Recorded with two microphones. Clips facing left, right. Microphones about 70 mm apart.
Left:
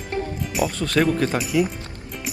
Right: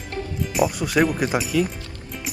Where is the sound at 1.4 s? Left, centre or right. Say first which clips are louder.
Left 1 dB; centre.